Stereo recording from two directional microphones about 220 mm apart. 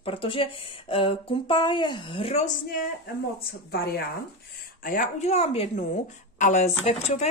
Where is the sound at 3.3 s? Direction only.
45° left (ahead or behind).